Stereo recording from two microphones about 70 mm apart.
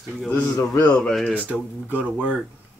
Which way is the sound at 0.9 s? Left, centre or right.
Centre.